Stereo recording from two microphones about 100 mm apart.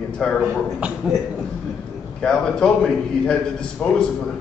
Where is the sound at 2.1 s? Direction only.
10° left (ahead or behind).